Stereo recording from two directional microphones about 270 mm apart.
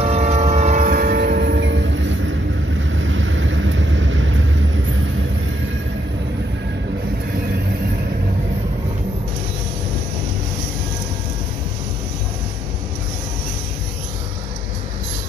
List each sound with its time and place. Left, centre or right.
0.0 s train: right
2.9 s vehicle: right